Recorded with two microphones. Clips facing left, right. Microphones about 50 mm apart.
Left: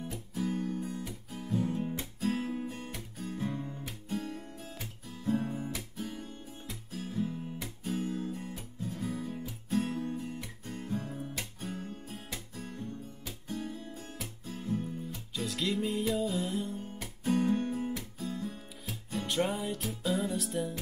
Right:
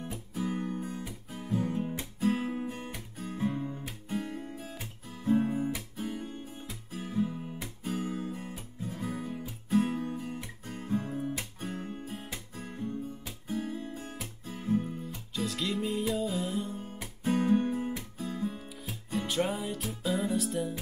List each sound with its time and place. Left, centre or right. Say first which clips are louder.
0.5 s music: even; right
4.1 s guitar: right 2 dB; right
5.2 s music: right 5 dB; centre
7.2 s guitar: even; centre
9.8 s guitar: right 4 dB; centre
10.3 s music: right 1 dB; centre
11.6 s guitar: right 3 dB; right
12.5 s music: right 4 dB; right
13.5 s guitar: right 4 dB; right
14.5 s music: right 5 dB; right
15.0 s music: right 2 dB; centre
17.2 s music: right 2 dB; right
19.1 s music: right 1 dB; centre